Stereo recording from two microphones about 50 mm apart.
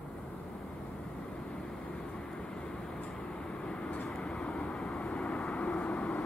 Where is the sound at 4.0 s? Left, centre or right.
Left.